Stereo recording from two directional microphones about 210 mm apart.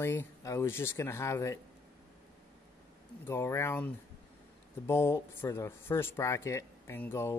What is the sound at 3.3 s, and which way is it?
Speech, 10° left (ahead or behind).